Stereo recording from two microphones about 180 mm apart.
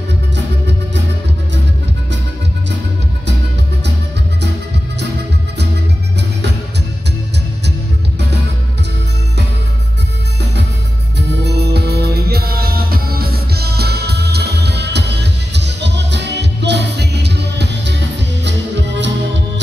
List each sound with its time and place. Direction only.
11.1 s music: 65° right (ahead or behind)